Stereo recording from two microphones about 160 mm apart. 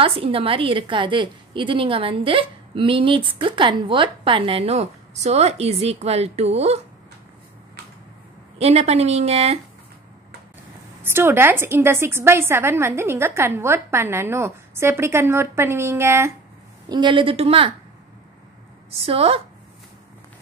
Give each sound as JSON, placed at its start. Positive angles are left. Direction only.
{"t": 0.0, "sound": "a woman's voice", "side_deg": -35}
{"t": 8.5, "sound": "a woman's voice", "side_deg": -40}
{"t": 11.1, "sound": "a woman's voice", "side_deg": -15}
{"t": 16.9, "sound": "a woman's voice", "side_deg": -30}
{"t": 18.9, "sound": "a woman's voice", "side_deg": -35}